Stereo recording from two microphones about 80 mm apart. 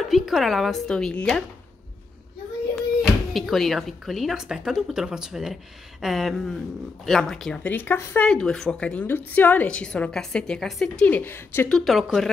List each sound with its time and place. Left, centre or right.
0.1 s speech: centre
2.7 s speech: centre
7.6 s speech: left
8.3 s a woman's voice: centre
9.0 s a woman's voice: left; by 11.1 s centre
11.1 s speech: left
11.7 s speech: centre